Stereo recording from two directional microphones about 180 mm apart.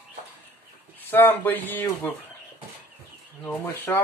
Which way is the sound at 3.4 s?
10° left (ahead or behind).